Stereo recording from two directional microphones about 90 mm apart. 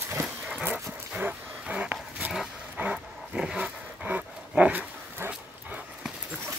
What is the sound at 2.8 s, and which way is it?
Dog, 10° right (ahead or behind).